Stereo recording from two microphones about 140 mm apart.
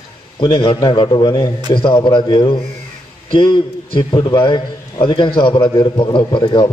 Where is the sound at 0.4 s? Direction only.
35° left (ahead or behind).